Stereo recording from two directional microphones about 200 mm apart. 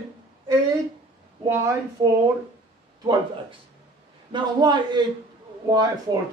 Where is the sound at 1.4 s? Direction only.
15° right (ahead or behind).